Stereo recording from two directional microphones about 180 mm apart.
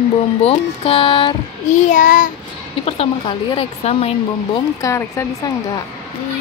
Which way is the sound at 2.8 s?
30° left (ahead or behind).